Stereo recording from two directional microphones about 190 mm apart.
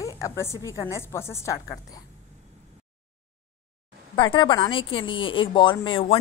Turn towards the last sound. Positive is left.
turn(degrees=30)  # may be behind; listen again after turning